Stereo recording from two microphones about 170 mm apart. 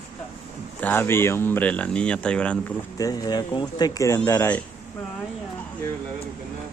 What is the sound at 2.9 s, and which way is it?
Speech, 20° left (ahead or behind).